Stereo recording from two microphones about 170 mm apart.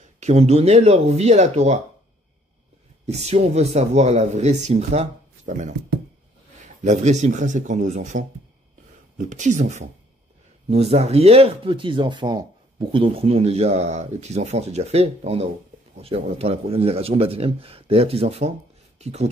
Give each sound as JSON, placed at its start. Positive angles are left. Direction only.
{"t": 0.2, "sound": "speech", "side_deg": -40}
{"t": 3.1, "sound": "speech", "side_deg": -40}
{"t": 6.8, "sound": "speech", "side_deg": -45}